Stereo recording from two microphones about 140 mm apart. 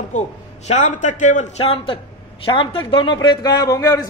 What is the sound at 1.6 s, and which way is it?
A man's voice, 45° left (ahead or behind).